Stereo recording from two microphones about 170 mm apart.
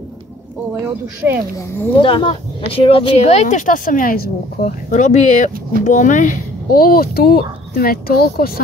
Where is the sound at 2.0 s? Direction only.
30° left (ahead or behind).